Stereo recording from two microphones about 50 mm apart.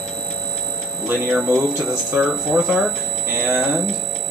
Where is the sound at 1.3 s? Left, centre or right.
Centre.